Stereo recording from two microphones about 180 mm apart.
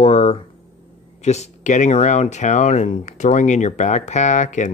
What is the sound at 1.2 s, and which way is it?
Speech, 40° left (ahead or behind).